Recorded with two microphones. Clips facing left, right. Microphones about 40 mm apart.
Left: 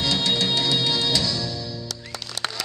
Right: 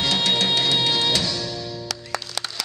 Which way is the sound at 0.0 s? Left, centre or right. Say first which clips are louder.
Right 2 dB; right.